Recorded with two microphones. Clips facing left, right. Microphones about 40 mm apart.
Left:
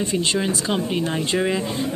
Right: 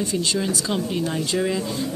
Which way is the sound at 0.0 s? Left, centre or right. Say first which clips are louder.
Left 2 dB; left.